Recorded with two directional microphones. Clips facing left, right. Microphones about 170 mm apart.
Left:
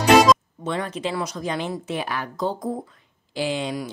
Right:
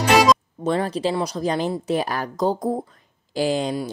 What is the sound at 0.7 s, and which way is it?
Speech, 35° right (ahead or behind).